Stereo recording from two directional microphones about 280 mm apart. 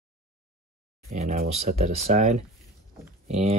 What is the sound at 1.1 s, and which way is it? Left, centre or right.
Speech, right.